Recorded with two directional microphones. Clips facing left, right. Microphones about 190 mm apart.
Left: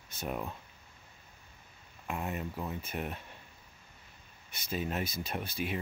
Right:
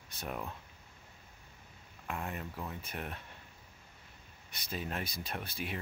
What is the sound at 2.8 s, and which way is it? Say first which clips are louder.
Speech: left 4 dB; 5° left (ahead or behind).